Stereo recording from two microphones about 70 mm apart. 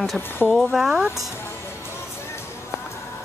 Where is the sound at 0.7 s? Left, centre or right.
Centre.